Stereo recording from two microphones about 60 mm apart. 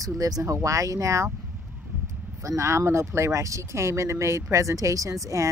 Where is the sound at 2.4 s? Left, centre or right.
Right.